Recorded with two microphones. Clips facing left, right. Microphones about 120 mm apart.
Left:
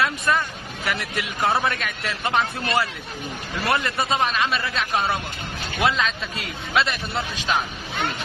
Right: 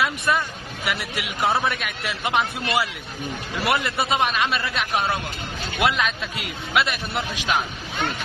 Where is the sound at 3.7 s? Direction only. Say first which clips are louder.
Even; 15° right (ahead or behind).